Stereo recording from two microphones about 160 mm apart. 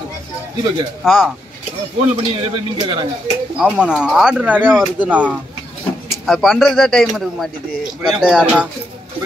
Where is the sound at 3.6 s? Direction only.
5° right (ahead or behind).